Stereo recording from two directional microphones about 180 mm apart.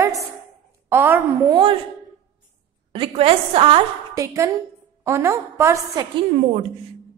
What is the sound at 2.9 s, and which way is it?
Speech, 30° right (ahead or behind).